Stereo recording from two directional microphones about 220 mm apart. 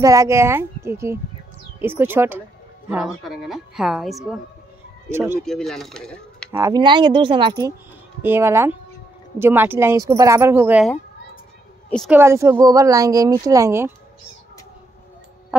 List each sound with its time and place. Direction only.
0.0 s a woman's voice: 15° right (ahead or behind)
5.1 s speech: 10° right (ahead or behind)
5.4 s speech: centre (ahead or behind)
6.5 s speech: 15° right (ahead or behind)
12.1 s speech: 10° right (ahead or behind)